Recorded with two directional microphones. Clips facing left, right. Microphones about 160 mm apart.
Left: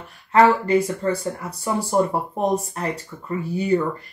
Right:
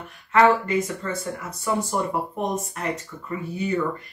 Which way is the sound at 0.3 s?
35° left (ahead or behind).